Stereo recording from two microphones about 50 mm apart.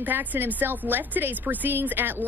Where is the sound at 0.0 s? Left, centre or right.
Right.